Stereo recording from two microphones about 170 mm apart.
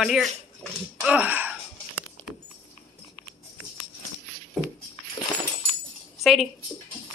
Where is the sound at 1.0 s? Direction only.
10° right (ahead or behind).